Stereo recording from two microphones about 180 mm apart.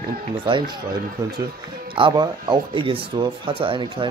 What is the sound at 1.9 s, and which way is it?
Speech, 25° right (ahead or behind).